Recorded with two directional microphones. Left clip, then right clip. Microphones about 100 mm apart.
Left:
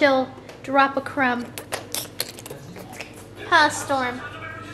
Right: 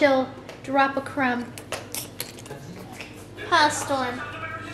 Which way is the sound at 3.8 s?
15° left (ahead or behind).